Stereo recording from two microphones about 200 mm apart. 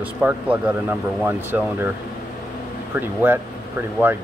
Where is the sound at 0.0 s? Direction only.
5° right (ahead or behind).